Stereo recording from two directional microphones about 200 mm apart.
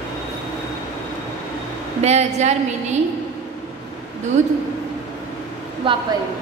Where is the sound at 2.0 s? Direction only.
35° right (ahead or behind).